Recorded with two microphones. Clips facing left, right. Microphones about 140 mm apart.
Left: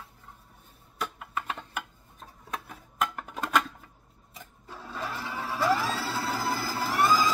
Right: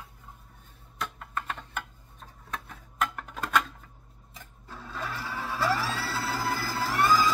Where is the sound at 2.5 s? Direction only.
5° left (ahead or behind).